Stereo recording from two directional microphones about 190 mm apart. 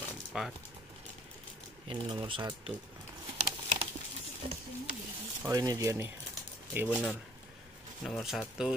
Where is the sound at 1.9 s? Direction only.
30° right (ahead or behind).